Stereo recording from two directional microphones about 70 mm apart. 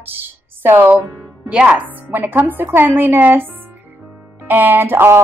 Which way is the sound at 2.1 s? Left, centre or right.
Right.